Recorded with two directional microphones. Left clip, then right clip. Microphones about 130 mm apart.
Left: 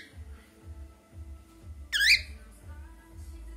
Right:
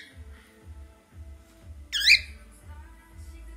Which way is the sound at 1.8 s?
40° left (ahead or behind).